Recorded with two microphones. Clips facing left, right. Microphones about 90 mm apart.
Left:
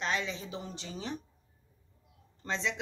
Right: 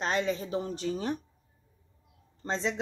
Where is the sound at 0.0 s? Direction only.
45° right (ahead or behind).